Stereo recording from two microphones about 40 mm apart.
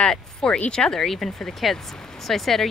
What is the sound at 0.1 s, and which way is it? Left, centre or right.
Speech, centre.